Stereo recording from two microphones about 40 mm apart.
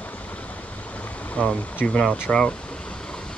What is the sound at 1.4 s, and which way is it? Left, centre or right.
Speech, left.